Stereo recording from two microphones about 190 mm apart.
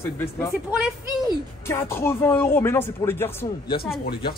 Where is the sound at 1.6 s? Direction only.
10° left (ahead or behind).